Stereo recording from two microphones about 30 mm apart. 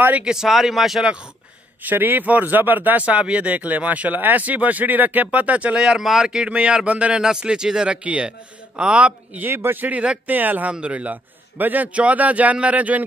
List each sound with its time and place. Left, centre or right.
0.5 s speech: centre
1.8 s speech: right
3.0 s speech: right
3.5 s speech: right
4.1 s speech: right
5.8 s a man's voice: right
6.9 s speech: right
7.2 s speech: right
7.9 s a man's voice: right
9.4 s a man's voice: right
10.7 s speech: right
11.5 s a man's voice: right
11.9 s speech: right